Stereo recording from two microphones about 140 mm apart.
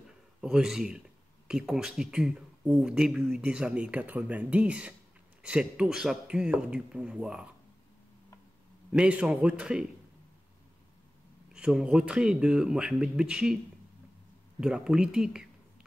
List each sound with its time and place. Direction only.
0.4 s a man's voice: 5° right (ahead or behind)
8.9 s speech: 5° right (ahead or behind)
11.5 s speech: 5° right (ahead or behind)
14.6 s speech: 5° right (ahead or behind)